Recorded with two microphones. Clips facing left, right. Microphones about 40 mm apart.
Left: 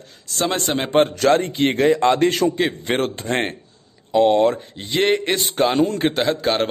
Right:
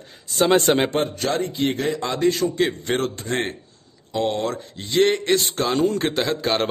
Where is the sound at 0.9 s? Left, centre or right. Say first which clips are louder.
Left 7 dB; left.